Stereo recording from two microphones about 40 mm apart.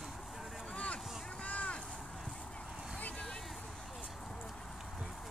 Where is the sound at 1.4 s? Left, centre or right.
Left.